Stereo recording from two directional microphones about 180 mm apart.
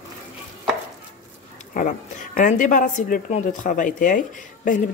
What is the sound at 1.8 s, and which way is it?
Speech, 50° left (ahead or behind).